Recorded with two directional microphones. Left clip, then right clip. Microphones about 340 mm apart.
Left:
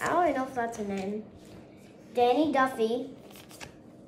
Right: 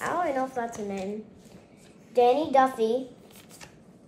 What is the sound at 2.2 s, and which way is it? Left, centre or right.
Speech, centre.